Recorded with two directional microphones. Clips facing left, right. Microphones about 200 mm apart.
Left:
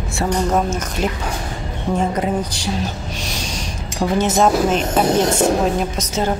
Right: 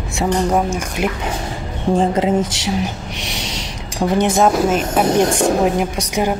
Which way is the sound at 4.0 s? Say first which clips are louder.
Right 1 dB; 15° right (ahead or behind).